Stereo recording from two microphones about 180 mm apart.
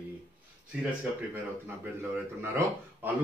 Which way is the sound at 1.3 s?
10° right (ahead or behind).